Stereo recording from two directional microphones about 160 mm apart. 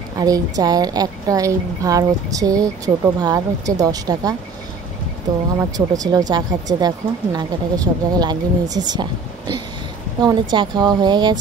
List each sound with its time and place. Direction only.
0.2 s a woman's voice: 25° right (ahead or behind)
5.6 s a woman's voice: 20° right (ahead or behind)